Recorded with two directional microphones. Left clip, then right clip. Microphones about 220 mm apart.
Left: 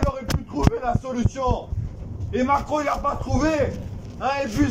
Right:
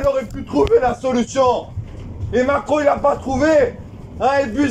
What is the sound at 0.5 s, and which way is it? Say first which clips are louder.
A man's voice: right 10 dB; 35° right (ahead or behind).